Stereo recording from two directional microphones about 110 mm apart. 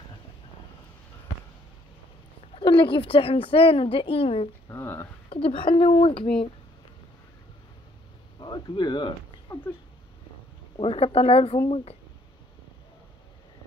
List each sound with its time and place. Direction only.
2.5 s a woman's voice: 50° left (ahead or behind)
4.6 s speech: 20° left (ahead or behind)
5.3 s a woman's voice: 55° left (ahead or behind)
8.4 s speech: 45° left (ahead or behind)
10.8 s a woman's voice: 60° left (ahead or behind)